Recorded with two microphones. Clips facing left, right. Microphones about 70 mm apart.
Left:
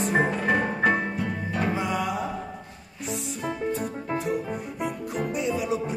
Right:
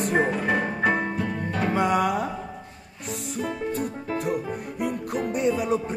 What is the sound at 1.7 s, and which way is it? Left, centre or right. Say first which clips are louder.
Music: right 5 dB; right.